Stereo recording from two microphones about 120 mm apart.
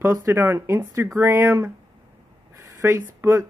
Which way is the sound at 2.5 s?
20° right (ahead or behind).